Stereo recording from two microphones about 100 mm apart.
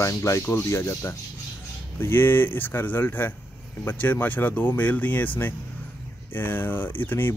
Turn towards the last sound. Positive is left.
turn(degrees=20)  # may be behind; listen again after turning